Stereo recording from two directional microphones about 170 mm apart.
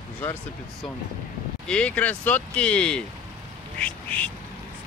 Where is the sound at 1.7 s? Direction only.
5° left (ahead or behind).